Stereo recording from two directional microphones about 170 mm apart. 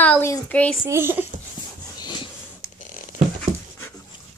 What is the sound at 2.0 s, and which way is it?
Wheeze, 25° left (ahead or behind).